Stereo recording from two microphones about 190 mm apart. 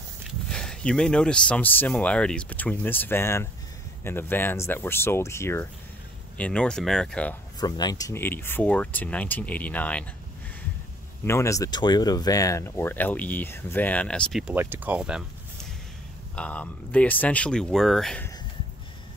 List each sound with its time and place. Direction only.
0.5 s speech: 5° left (ahead or behind)
7.6 s speech: 20° left (ahead or behind)
11.2 s speech: 15° left (ahead or behind); by 15.2 s 5° right (ahead or behind)
16.3 s speech: 5° left (ahead or behind)